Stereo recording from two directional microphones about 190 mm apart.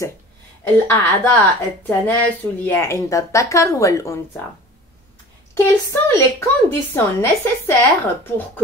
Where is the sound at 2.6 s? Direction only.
15° left (ahead or behind).